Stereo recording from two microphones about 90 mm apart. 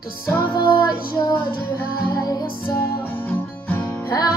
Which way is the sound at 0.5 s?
50° left (ahead or behind).